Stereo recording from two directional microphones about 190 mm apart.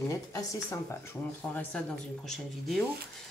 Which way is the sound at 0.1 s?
15° left (ahead or behind).